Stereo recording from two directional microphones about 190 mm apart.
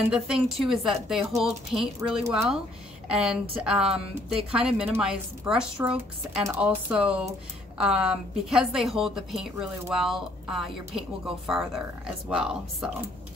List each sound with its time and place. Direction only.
0.1 s a woman's voice: centre (ahead or behind)